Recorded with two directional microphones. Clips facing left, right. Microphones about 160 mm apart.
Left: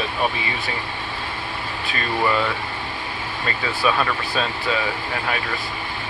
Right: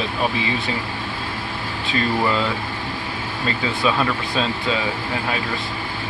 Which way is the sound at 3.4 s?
20° right (ahead or behind).